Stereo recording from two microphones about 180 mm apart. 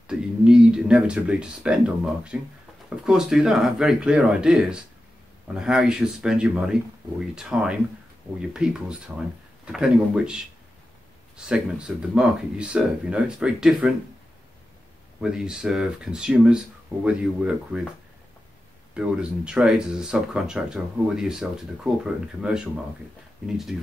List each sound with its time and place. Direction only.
0.0 s speech: 5° right (ahead or behind)
15.1 s speech: 5° right (ahead or behind)
18.9 s speech: 5° right (ahead or behind)